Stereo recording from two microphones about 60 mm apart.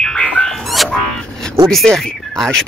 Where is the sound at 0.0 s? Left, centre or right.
Centre.